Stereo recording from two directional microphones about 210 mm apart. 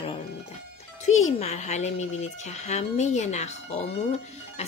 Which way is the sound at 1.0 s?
35° left (ahead or behind).